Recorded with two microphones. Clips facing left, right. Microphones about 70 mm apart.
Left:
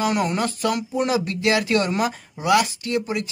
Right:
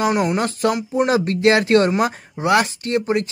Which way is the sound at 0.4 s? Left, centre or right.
Right.